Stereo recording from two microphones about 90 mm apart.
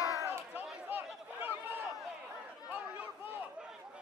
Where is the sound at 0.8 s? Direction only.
20° right (ahead or behind).